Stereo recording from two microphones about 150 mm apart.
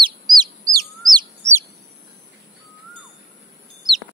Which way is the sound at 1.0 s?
Centre (ahead or behind).